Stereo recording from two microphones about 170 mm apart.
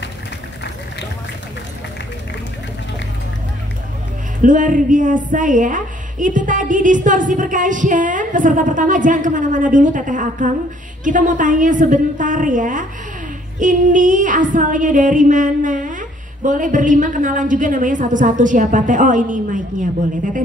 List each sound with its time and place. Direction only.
4.4 s a woman's voice: 50° right (ahead or behind)